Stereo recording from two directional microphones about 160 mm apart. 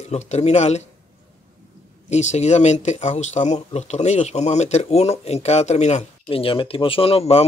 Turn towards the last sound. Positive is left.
turn(degrees=40)  # may be behind; listen again after turning